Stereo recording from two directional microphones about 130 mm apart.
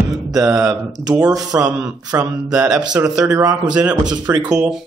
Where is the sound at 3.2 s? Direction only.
30° right (ahead or behind).